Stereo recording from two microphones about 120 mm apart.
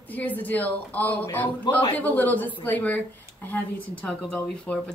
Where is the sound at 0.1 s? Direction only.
15° left (ahead or behind).